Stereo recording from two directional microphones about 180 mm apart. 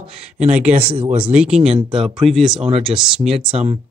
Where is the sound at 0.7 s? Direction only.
30° right (ahead or behind).